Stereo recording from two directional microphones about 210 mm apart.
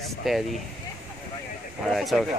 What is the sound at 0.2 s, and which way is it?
Speech, centre (ahead or behind).